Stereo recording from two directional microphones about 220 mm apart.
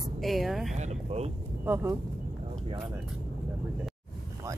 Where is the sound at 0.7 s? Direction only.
30° right (ahead or behind).